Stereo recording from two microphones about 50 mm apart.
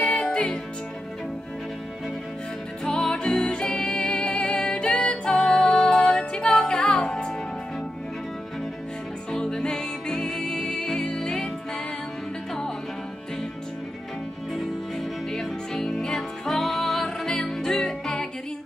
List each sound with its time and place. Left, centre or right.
0.0 s music: centre
2.8 s music: centre
9.3 s music: centre
14.5 s music: centre